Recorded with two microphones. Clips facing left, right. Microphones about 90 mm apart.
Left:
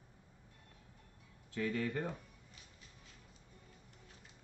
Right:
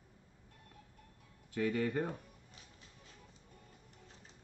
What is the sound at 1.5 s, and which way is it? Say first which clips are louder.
Speech: right 3 dB; 15° right (ahead or behind).